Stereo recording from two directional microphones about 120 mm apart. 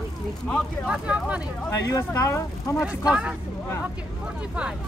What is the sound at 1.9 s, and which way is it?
Speech, 25° left (ahead or behind).